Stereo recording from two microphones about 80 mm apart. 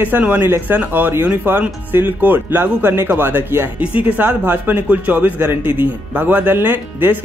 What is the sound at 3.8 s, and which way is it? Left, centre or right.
Speech, centre.